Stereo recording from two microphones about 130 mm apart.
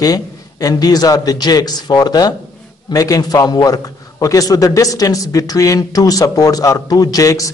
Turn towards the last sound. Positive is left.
turn(degrees=25)  # may be behind; listen again after turning